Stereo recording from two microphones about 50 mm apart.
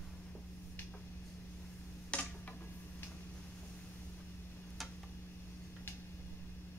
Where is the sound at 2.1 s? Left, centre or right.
Left.